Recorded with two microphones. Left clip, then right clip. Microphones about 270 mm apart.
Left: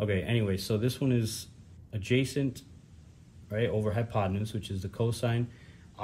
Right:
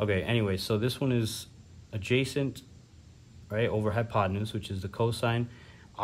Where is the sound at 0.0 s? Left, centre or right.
Centre.